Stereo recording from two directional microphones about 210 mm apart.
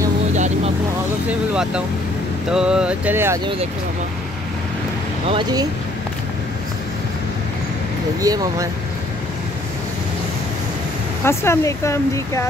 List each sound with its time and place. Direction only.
1.5 s speech: 5° right (ahead or behind)
5.3 s speech: 20° right (ahead or behind)
8.2 s speech: 15° right (ahead or behind)
11.2 s speech: 10° left (ahead or behind)